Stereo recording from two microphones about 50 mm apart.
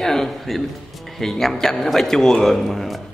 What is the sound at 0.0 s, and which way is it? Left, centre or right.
A man's voice, centre.